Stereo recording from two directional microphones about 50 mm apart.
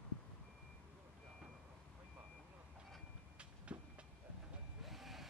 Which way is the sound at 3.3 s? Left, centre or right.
Right.